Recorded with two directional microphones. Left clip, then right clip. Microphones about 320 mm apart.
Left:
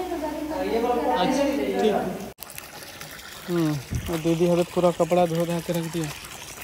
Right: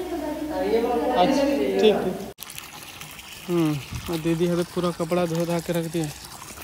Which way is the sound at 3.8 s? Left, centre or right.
Centre.